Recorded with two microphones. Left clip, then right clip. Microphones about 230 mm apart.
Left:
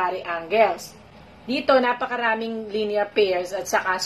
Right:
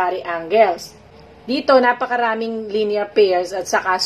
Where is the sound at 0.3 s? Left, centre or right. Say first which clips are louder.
Right 5 dB; centre.